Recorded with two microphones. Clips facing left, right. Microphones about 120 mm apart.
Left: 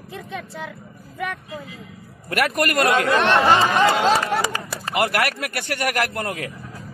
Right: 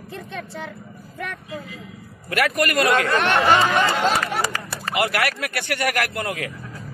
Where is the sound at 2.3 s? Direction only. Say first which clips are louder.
Even; 50° left (ahead or behind).